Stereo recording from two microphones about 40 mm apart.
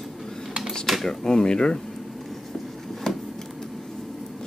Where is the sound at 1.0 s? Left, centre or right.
Centre.